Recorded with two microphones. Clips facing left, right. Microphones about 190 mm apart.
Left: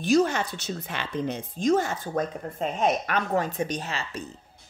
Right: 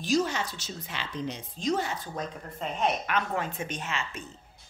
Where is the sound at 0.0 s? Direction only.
55° left (ahead or behind).